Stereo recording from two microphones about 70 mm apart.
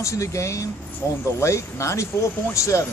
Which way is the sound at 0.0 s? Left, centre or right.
Left.